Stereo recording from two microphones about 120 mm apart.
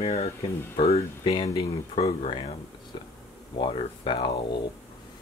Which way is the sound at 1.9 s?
60° left (ahead or behind).